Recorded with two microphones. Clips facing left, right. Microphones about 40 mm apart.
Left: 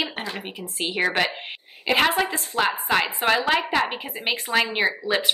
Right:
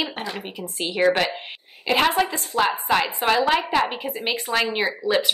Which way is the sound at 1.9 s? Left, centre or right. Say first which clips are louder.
Right 1 dB; centre.